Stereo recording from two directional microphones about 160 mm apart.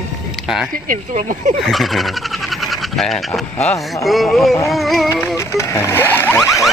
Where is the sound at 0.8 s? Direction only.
50° right (ahead or behind).